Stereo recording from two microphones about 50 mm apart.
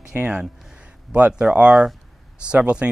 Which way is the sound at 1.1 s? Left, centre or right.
Right.